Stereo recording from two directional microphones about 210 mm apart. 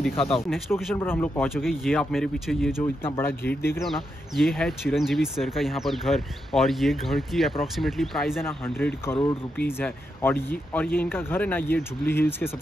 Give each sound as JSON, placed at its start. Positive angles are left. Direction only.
{"t": 0.1, "sound": "speech", "side_deg": 25}
{"t": 0.5, "sound": "speech", "side_deg": 0}
{"t": 0.9, "sound": "speech", "side_deg": 10}
{"t": 1.5, "sound": "speech", "side_deg": 0}
{"t": 3.9, "sound": "speech", "side_deg": 0}